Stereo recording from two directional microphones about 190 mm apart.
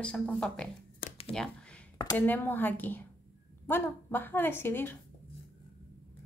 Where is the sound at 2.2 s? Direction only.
10° left (ahead or behind).